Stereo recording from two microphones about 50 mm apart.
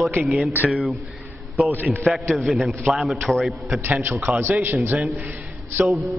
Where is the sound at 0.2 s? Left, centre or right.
Centre.